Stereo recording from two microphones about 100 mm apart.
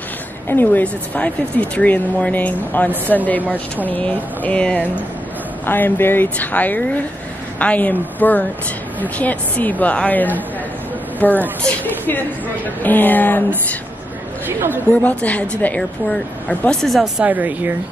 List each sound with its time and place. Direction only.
0.5 s a woman's voice: 20° left (ahead or behind)
15.0 s speech: 15° left (ahead or behind)
17.2 s speech: 15° right (ahead or behind)